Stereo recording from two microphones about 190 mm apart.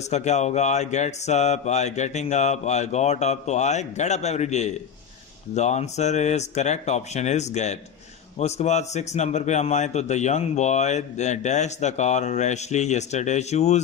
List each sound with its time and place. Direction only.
0.1 s a man's voice: 35° left (ahead or behind)